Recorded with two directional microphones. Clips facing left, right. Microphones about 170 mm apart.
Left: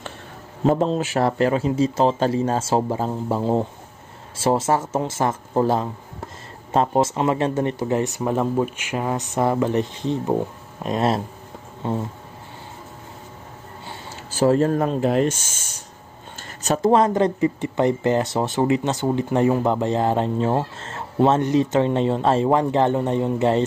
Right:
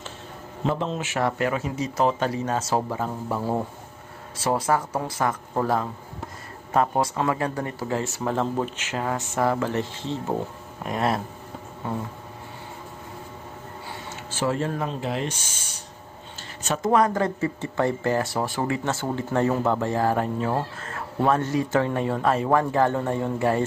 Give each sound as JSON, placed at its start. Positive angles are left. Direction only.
{"t": 0.7, "sound": "a man's voice", "side_deg": 40}
{"t": 14.3, "sound": "speech", "side_deg": 40}
{"t": 16.6, "sound": "speech", "side_deg": 35}